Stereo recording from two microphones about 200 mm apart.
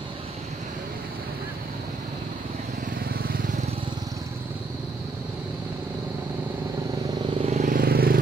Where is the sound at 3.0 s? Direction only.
50° right (ahead or behind).